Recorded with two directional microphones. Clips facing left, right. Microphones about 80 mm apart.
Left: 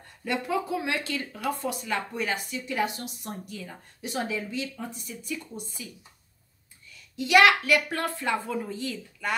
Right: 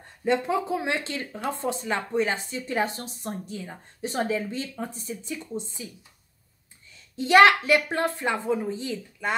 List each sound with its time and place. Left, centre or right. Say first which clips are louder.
0.2 s speech: right 4 dB; right
6.9 s a sound: right 2 dB; right
7.6 s speech: right 3 dB; right